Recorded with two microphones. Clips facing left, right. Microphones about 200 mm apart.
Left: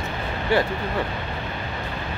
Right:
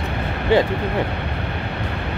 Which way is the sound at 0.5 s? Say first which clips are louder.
Right 5 dB; 20° right (ahead or behind).